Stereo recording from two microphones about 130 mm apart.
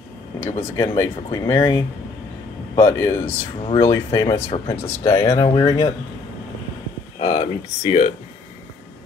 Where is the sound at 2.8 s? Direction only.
20° left (ahead or behind).